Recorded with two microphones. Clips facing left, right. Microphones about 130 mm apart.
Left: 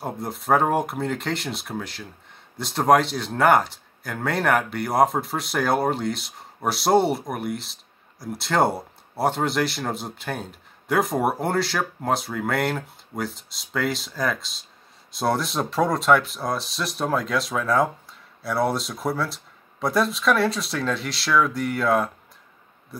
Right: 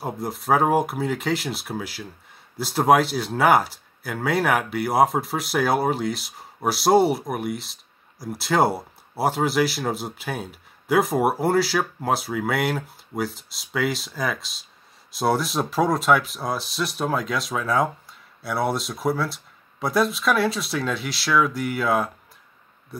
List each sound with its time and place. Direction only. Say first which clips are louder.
0.0 s speech: right 1 dB; centre (ahead or behind)